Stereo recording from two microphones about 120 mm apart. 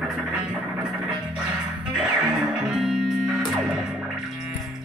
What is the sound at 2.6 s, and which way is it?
Music, 5° right (ahead or behind).